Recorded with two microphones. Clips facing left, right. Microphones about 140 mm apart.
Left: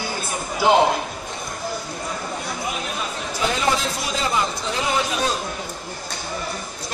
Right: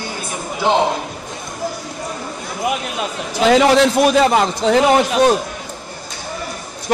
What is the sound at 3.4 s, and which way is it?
A man's voice, 80° right.